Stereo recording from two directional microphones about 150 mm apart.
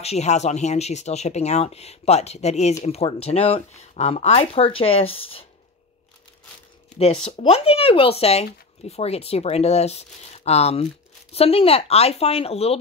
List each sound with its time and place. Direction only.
0.0 s speech: 45° left (ahead or behind)
7.0 s speech: 40° left (ahead or behind)